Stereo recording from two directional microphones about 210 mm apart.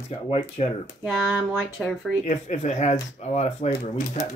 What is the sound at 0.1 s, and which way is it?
Speech, 30° left (ahead or behind).